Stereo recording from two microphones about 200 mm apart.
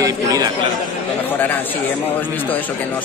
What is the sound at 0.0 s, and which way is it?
Speech, 15° right (ahead or behind).